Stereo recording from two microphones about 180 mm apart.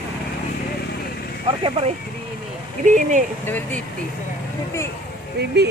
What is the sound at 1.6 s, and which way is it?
Speech, 35° right (ahead or behind).